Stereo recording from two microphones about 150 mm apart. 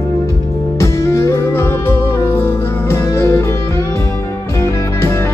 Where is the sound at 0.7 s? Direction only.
20° left (ahead or behind).